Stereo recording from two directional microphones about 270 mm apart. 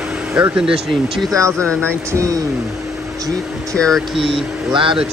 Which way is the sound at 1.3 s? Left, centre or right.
Centre.